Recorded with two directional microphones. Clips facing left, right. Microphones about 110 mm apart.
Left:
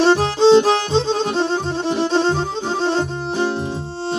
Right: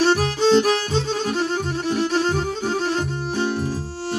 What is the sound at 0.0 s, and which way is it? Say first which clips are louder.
Music: left 5 dB; 25° left (ahead or behind).